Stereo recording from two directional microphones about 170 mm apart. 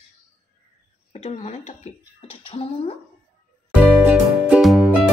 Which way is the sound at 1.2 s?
40° left (ahead or behind).